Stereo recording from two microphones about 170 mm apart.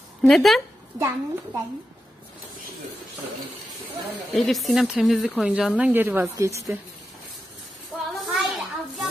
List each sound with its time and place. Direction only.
0.2 s speech: centre (ahead or behind)
0.9 s a woman's voice: 20° right (ahead or behind)
4.4 s a woman's voice: centre (ahead or behind); by 6.8 s 15° right (ahead or behind)
8.1 s a sound: centre (ahead or behind)